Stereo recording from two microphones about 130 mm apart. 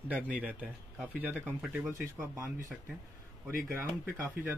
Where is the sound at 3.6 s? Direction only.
15° right (ahead or behind).